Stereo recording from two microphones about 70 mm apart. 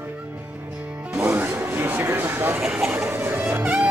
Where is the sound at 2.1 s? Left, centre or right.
Right.